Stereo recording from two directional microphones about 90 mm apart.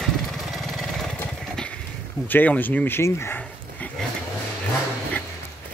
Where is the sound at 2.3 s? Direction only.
20° left (ahead or behind).